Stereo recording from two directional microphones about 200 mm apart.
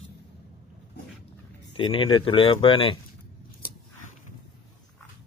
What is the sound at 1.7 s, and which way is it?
Speech, 25° left (ahead or behind).